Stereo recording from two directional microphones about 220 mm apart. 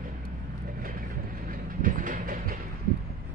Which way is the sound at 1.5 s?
40° right (ahead or behind).